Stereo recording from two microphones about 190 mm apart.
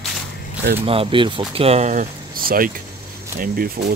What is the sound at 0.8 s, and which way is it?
Speech, 30° right (ahead or behind).